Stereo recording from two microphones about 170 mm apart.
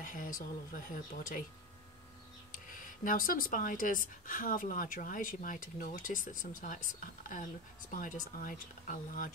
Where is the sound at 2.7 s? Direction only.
55° left (ahead or behind).